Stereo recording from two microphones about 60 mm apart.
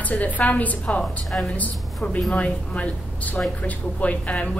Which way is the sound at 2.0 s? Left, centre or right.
Centre.